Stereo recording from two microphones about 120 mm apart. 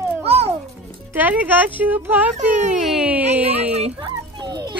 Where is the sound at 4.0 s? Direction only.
35° right (ahead or behind).